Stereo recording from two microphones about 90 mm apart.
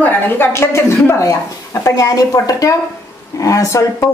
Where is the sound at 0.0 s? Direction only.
25° left (ahead or behind).